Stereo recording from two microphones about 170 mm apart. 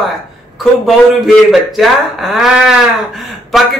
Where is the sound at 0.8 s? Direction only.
Centre (ahead or behind).